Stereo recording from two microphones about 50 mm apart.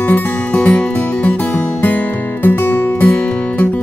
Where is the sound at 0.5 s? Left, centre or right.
Left.